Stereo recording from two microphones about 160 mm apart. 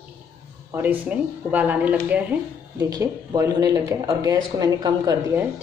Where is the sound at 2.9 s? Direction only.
20° right (ahead or behind).